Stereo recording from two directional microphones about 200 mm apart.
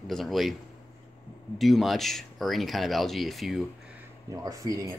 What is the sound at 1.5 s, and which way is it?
Speech, centre (ahead or behind).